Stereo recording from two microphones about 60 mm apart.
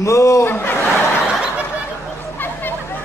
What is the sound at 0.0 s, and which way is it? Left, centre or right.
Speech, left.